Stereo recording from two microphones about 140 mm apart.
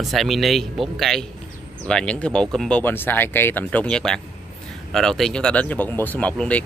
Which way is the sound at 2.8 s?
15° left (ahead or behind).